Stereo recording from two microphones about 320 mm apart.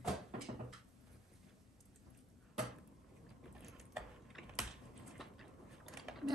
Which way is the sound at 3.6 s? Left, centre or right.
Centre.